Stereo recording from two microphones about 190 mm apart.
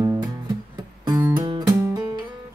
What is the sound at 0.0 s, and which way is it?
Music, 15° right (ahead or behind).